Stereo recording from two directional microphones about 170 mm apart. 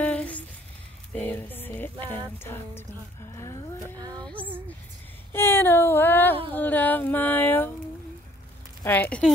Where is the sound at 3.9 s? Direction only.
25° right (ahead or behind).